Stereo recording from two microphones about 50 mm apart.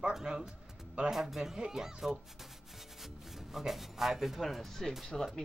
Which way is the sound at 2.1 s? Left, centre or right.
Centre.